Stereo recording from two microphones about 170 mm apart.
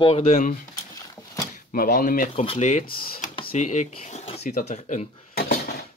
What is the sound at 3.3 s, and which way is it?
Speech, 35° left (ahead or behind).